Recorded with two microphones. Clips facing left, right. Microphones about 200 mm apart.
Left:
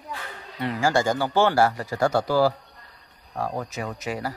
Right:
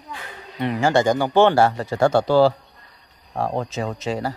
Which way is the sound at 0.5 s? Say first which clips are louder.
Right 4 dB; 20° right (ahead or behind).